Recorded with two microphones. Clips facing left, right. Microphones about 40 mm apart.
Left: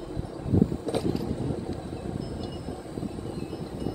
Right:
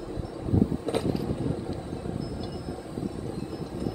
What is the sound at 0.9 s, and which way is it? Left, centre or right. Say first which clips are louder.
Vehicle: right 1 dB; right.